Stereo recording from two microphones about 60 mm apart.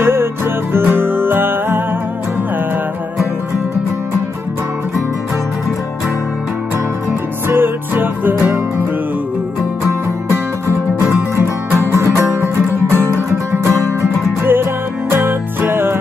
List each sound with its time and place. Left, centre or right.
0.0 s music: right
7.4 s music: right
10.7 s music: right